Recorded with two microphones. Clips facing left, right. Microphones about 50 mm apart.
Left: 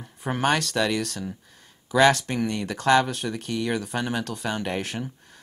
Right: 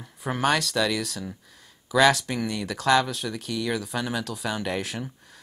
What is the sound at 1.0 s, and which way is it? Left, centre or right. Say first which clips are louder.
Speech: left 2 dB; centre.